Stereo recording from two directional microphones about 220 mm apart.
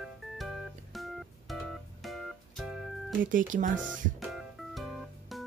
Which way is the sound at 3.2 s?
35° right (ahead or behind).